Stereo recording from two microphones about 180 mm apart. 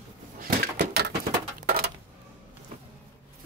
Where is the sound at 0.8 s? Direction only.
70° right (ahead or behind).